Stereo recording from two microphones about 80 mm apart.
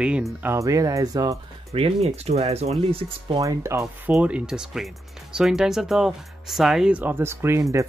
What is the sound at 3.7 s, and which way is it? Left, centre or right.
Speech, right.